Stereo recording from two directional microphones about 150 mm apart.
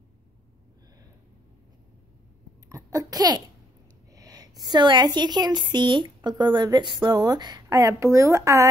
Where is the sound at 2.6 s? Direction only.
20° right (ahead or behind).